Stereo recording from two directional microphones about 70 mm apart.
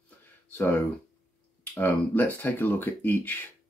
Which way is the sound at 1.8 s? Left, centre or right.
Left.